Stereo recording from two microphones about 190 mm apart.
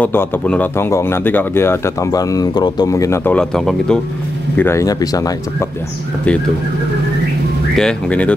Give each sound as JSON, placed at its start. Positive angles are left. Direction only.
{"t": 0.0, "sound": "speech", "side_deg": 10}
{"t": 4.6, "sound": "speech", "side_deg": 15}
{"t": 7.7, "sound": "speech", "side_deg": 5}